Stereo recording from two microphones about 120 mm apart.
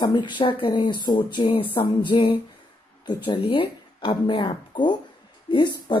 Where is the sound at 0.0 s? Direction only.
40° left (ahead or behind).